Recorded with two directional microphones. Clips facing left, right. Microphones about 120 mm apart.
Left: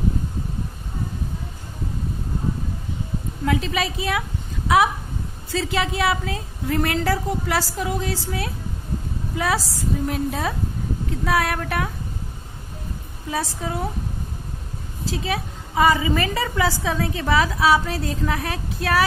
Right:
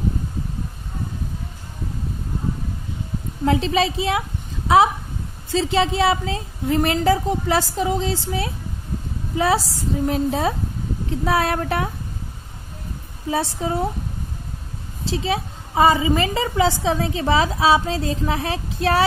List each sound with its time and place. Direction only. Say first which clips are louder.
3.4 s a woman's voice: right 4 dB; 25° right (ahead or behind)
5.5 s a woman's voice: right 4 dB; 25° right (ahead or behind)
13.3 s a woman's voice: right 4 dB; 25° right (ahead or behind)
15.0 s a woman's voice: right 3 dB; 25° right (ahead or behind)